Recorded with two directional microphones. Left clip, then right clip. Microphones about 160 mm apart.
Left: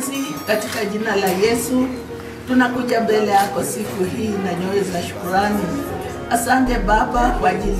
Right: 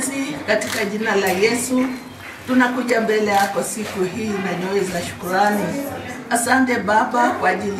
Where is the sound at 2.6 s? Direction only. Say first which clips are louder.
Even; centre (ahead or behind).